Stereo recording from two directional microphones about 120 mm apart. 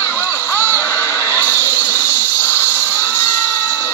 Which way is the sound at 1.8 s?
15° left (ahead or behind).